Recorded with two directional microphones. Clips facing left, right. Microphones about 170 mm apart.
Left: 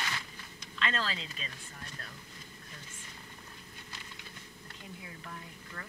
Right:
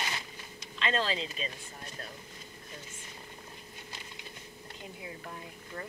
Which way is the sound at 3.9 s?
20° right (ahead or behind).